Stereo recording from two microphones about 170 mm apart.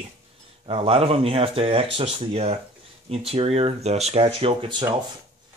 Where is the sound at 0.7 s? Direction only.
35° right (ahead or behind).